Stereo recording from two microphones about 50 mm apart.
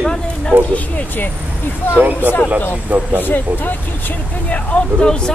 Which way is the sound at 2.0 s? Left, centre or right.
Right.